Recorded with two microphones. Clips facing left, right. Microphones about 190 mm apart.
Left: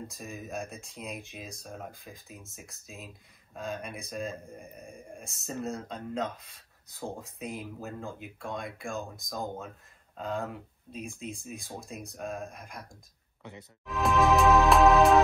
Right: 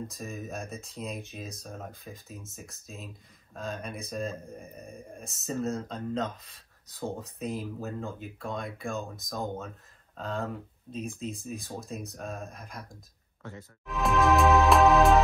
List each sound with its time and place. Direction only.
0.1 s speech: centre (ahead or behind)
13.4 s speech: 15° left (ahead or behind)
13.8 s music: centre (ahead or behind)